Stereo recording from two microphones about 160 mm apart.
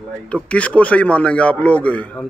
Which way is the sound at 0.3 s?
10° left (ahead or behind).